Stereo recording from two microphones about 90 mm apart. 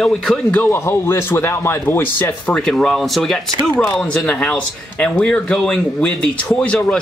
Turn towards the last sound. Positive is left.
turn(degrees=15)  # may be behind; listen again after turning